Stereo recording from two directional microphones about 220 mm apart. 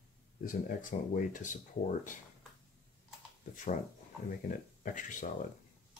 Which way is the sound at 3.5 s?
35° left (ahead or behind).